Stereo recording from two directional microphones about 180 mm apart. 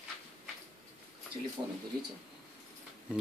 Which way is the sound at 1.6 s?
25° right (ahead or behind).